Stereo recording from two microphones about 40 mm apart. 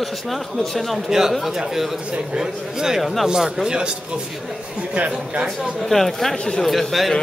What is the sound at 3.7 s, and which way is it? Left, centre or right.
Speech, centre.